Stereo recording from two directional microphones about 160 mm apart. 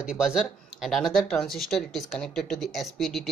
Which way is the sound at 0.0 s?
5° right (ahead or behind).